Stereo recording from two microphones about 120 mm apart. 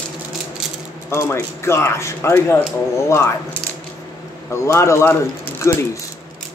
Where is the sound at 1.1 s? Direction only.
20° left (ahead or behind).